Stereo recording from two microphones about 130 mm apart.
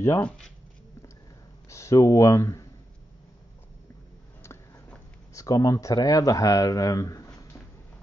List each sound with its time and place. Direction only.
0.0 s speech: 20° left (ahead or behind)
1.7 s speech: 25° left (ahead or behind)
5.3 s speech: 25° left (ahead or behind)